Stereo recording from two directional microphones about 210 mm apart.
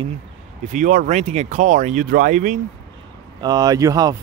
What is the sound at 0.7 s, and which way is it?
Speech, 40° right (ahead or behind).